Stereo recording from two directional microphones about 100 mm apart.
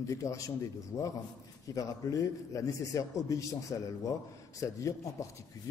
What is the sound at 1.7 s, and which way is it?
A man's voice, 35° left (ahead or behind).